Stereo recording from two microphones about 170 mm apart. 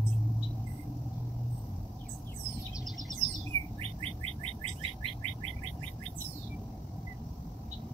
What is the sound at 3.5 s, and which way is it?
Bird, 35° right (ahead or behind).